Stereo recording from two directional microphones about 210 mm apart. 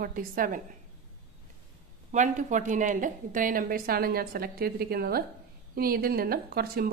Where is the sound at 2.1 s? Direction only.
35° right (ahead or behind).